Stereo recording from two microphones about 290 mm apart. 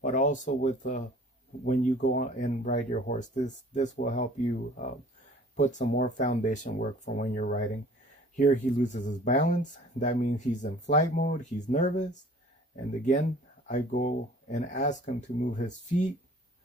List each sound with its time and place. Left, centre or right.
0.0 s speech: left
5.6 s speech: left